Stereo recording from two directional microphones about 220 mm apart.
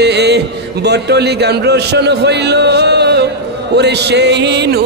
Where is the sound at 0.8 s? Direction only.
50° right (ahead or behind).